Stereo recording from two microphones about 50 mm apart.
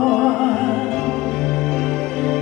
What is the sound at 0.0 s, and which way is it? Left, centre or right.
Music, centre.